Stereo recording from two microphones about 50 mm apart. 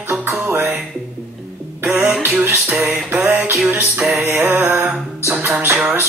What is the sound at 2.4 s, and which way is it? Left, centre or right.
Music, right.